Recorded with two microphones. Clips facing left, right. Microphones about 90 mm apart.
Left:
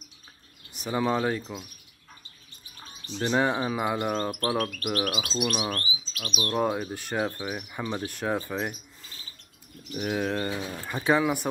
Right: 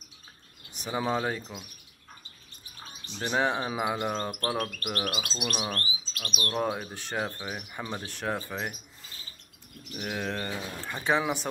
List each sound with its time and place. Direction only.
0.7 s speech: centre (ahead or behind)
1.0 s chirp: 5° right (ahead or behind)
3.2 s speech: 10° right (ahead or behind)
3.4 s chirp: centre (ahead or behind)
6.1 s speech: 5° left (ahead or behind)
6.6 s chirp: centre (ahead or behind)
8.0 s speech: 5° left (ahead or behind)
9.0 s bird: centre (ahead or behind)
9.9 s chirp: 5° left (ahead or behind)